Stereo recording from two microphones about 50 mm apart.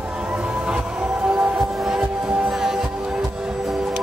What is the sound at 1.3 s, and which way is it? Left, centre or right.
Music, centre.